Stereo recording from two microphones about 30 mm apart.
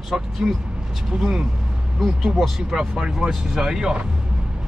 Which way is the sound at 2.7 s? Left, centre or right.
Right.